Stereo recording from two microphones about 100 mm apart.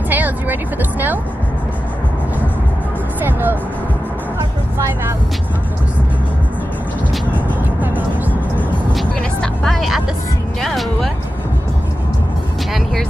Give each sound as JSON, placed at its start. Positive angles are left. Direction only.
{"t": 0.1, "sound": "vehicle", "side_deg": -15}
{"t": 3.3, "sound": "vehicle", "side_deg": -20}
{"t": 8.9, "sound": "vehicle", "side_deg": 5}
{"t": 10.6, "sound": "speech", "side_deg": 0}